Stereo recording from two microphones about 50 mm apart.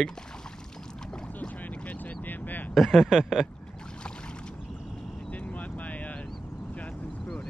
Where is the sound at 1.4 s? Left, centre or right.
Left.